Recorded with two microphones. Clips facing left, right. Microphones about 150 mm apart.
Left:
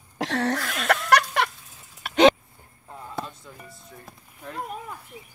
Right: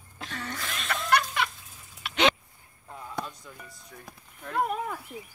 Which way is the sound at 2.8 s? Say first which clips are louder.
Left 1 dB; 5° left (ahead or behind).